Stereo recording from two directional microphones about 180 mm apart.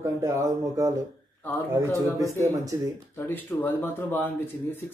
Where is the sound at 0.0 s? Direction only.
15° right (ahead or behind).